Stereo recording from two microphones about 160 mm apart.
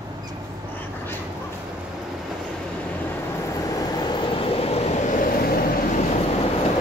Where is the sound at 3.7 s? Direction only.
25° left (ahead or behind); by 5.6 s 65° left (ahead or behind).